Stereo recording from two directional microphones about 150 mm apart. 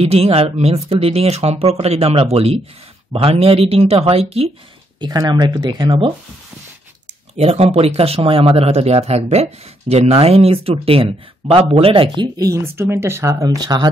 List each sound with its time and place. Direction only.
0.0 s speech: 40° right (ahead or behind)
5.0 s speech: 25° right (ahead or behind)
7.3 s speech: 45° right (ahead or behind); by 13.8 s 25° right (ahead or behind)